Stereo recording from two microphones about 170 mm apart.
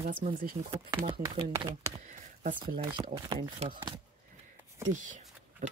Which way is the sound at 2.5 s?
30° right (ahead or behind).